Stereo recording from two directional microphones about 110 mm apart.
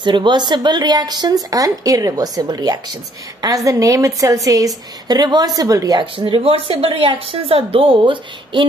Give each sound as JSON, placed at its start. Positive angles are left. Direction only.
{"t": 0.0, "sound": "speech", "side_deg": -45}
{"t": 6.1, "sound": "a woman's voice", "side_deg": -50}